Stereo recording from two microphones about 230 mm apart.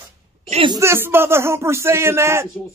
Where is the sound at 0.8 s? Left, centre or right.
Centre.